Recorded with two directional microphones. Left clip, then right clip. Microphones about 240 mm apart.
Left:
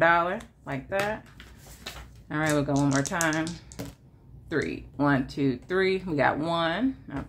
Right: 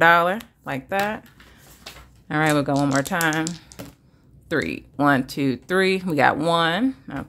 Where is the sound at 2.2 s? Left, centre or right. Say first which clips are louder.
Right 6 dB; right.